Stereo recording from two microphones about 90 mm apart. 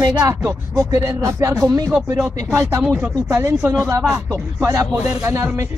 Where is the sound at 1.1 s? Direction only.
35° right (ahead or behind).